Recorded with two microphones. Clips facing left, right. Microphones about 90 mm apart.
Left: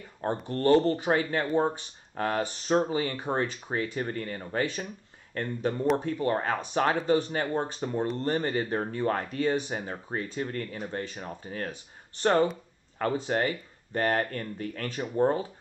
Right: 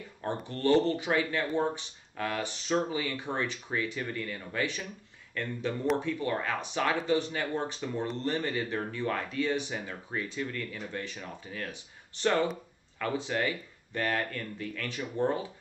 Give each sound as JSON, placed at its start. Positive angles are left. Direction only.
{"t": 0.2, "sound": "speech", "side_deg": 40}